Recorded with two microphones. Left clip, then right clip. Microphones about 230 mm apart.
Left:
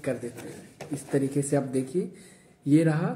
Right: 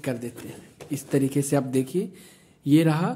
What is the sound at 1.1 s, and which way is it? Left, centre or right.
Speech, right.